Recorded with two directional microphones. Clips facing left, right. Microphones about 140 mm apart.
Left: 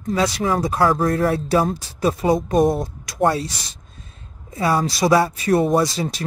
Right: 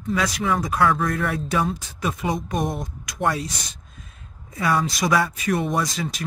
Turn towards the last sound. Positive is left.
turn(degrees=30)  # may be behind; listen again after turning